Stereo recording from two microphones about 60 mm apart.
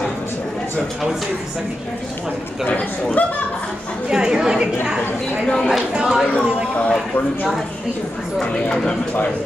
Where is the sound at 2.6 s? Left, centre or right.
Left.